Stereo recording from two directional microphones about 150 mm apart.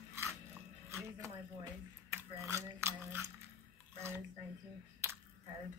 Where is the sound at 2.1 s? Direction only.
20° right (ahead or behind).